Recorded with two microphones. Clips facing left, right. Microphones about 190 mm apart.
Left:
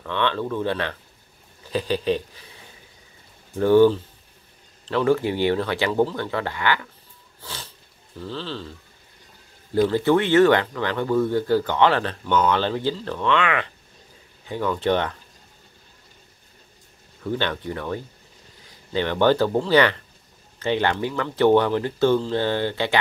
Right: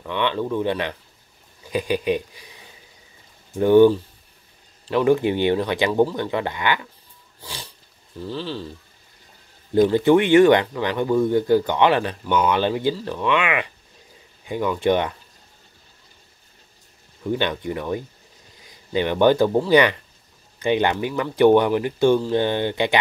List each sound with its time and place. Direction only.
0.0 s speech: 15° right (ahead or behind)
3.5 s speech: 15° right (ahead or behind)
7.4 s roaring cats: 15° right (ahead or behind)
8.2 s speech: 15° right (ahead or behind)
9.8 s speech: 15° right (ahead or behind)
17.2 s speech: 15° right (ahead or behind)